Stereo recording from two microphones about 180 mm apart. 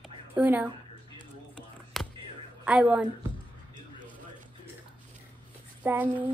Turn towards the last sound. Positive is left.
turn(degrees=-10)  # may be behind; listen again after turning